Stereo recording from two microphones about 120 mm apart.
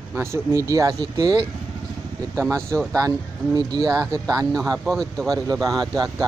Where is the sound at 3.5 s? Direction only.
30° right (ahead or behind).